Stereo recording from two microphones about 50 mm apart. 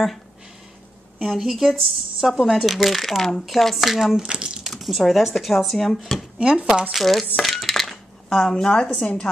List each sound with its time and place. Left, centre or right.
1.3 s speech: centre
2.4 s speech: centre
4.3 s a sound: centre
4.6 s speech: centre
6.3 s speech: centre
6.9 s speech: centre
7.4 s coin: centre
8.4 s a woman's voice: centre